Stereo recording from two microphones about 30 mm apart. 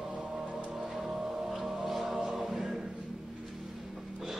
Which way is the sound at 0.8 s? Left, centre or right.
Centre.